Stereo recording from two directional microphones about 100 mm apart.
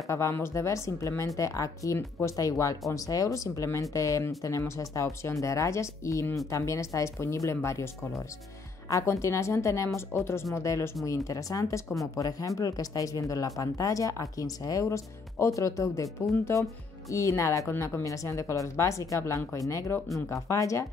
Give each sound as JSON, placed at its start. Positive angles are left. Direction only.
{"t": 0.1, "sound": "speech", "side_deg": 25}
{"t": 17.1, "sound": "speech", "side_deg": 30}